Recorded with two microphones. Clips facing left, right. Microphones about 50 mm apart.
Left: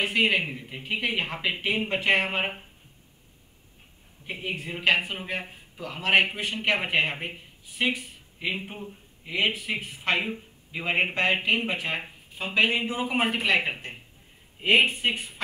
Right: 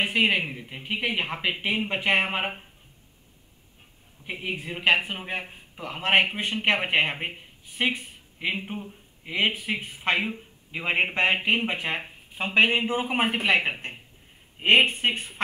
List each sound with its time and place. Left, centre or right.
0.0 s speech: centre
4.4 s speech: centre
4.8 s speech: centre
8.5 s speech: centre
9.2 s speech: right
10.1 s speech: centre; by 15.4 s right